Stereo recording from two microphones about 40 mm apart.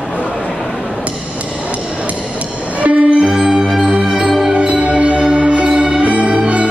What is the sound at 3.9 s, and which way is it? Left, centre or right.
Music, right.